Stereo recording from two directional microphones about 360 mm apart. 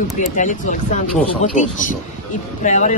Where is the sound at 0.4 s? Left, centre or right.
Left.